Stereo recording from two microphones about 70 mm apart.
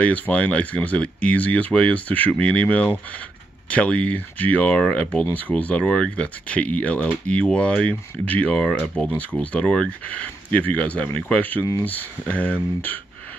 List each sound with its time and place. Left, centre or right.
0.0 s speech: centre